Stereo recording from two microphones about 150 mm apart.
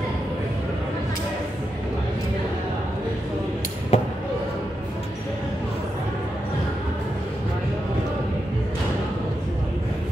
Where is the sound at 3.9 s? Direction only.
40° left (ahead or behind).